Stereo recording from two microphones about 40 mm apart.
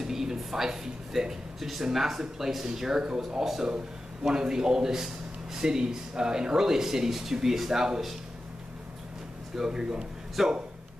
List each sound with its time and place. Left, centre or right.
0.0 s a man's voice: centre
9.7 s a man's voice: centre
10.4 s a man's voice: centre